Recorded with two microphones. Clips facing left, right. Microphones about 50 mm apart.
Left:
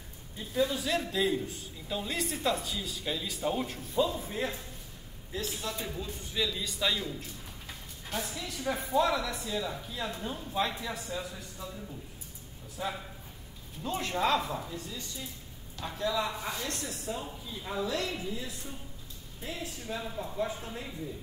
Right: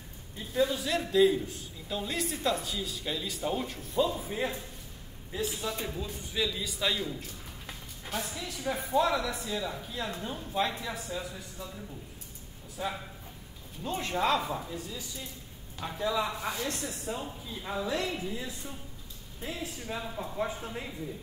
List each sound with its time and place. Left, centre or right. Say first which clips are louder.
0.4 s a man's voice: right 1 dB; centre
12.7 s a man's voice: right 1 dB; centre